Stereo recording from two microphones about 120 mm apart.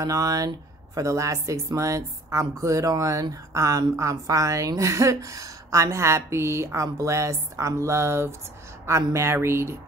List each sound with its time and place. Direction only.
0.0 s speech: 30° right (ahead or behind)